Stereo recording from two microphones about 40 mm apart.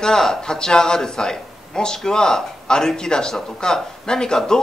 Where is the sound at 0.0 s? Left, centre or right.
Centre.